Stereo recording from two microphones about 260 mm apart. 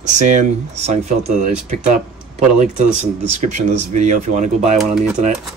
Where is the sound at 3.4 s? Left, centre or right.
Right.